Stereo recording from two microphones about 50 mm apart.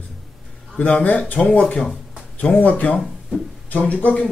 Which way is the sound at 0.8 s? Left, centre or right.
Left.